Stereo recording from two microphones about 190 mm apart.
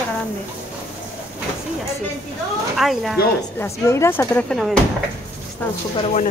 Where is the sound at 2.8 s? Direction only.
Centre (ahead or behind).